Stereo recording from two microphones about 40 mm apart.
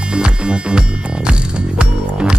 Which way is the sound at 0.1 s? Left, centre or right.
Right.